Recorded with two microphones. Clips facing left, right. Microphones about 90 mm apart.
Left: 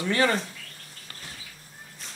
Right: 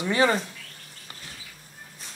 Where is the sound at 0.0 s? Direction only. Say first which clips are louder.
Right 2 dB; 20° right (ahead or behind).